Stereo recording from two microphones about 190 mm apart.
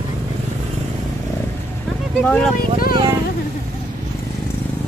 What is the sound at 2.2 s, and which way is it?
Speech, 5° left (ahead or behind).